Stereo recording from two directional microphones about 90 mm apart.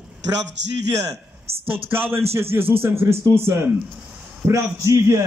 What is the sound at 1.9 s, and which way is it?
A man's voice, 25° right (ahead or behind).